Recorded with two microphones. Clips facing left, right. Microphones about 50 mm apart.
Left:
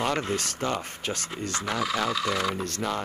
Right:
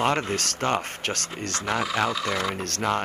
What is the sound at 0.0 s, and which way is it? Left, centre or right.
Speech, right.